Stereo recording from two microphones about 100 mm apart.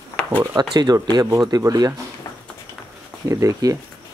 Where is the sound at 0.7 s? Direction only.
40° right (ahead or behind).